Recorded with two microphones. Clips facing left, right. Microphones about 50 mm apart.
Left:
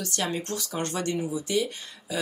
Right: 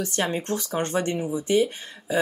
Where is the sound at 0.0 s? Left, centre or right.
Right.